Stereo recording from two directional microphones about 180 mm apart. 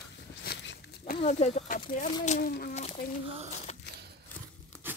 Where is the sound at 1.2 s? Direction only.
35° left (ahead or behind).